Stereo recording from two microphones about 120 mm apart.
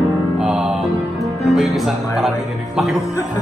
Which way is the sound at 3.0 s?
25° left (ahead or behind).